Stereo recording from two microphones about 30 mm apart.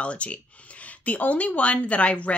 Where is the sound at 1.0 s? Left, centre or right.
Left.